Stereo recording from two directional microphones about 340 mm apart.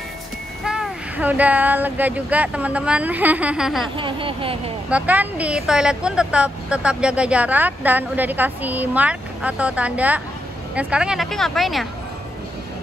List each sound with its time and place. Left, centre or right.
0.7 s speech: centre
3.9 s speech: centre
4.8 s speech: centre